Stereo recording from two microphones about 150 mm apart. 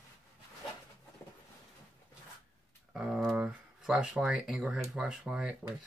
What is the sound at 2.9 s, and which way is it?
Speech, 5° right (ahead or behind).